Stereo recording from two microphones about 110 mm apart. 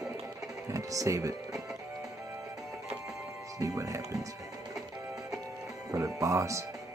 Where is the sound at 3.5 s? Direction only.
30° right (ahead or behind).